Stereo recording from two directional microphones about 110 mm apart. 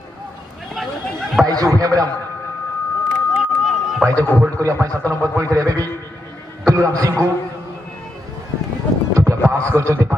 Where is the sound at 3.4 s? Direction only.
Centre (ahead or behind).